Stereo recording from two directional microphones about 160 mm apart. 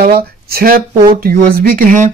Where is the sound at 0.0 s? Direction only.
70° right (ahead or behind).